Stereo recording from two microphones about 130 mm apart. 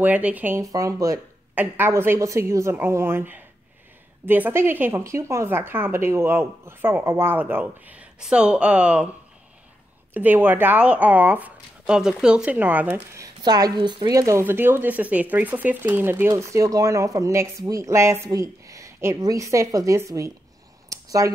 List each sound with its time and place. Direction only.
0.0 s speech: 10° right (ahead or behind)
0.7 s speech: 25° right (ahead or behind)
1.5 s speech: 15° right (ahead or behind)
10.1 s speech: 15° right (ahead or behind)
13.4 s speech: 30° right (ahead or behind)
20.9 s a sound: 25° right (ahead or behind)